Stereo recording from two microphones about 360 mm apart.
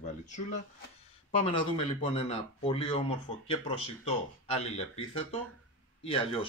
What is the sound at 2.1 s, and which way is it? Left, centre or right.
Speech, centre.